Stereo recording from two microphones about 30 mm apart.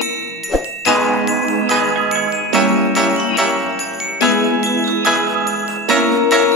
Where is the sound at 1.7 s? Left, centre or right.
Centre.